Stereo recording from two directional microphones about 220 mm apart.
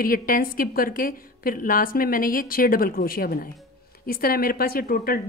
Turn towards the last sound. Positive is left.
turn(degrees=40)  # may be behind; listen again after turning